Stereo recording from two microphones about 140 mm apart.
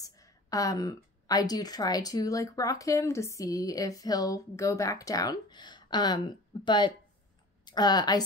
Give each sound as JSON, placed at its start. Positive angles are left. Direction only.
{"t": 0.0, "sound": "a woman's voice", "side_deg": 25}